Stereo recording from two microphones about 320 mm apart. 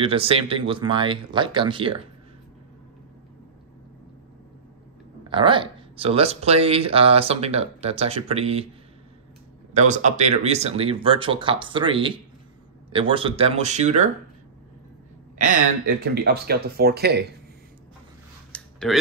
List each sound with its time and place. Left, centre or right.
0.0 s speech: centre
5.3 s speech: centre
9.8 s speech: right
16.0 s speech: right
18.5 s a sound: centre